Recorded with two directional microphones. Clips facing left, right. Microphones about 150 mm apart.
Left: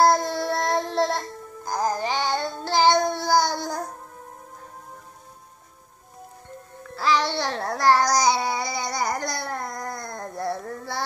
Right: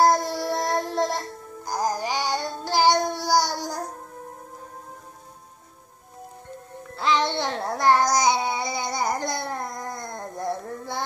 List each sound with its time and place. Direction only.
0.0 s music: 10° right (ahead or behind)
7.0 s babbling: 20° right (ahead or behind)